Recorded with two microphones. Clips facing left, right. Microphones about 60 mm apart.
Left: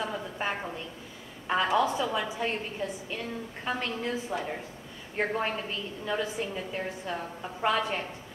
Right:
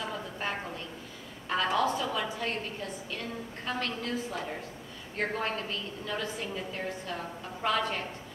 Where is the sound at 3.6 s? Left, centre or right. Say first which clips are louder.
Left 2 dB; centre.